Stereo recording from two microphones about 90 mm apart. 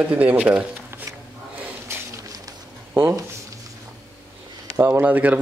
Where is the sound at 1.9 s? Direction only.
30° right (ahead or behind).